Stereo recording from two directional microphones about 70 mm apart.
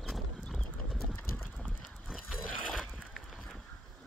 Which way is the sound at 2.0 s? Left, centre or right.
Centre.